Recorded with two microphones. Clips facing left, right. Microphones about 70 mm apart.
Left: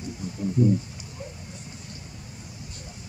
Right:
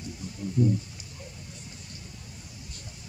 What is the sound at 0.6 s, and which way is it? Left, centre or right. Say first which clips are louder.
Speech: left 3 dB; centre.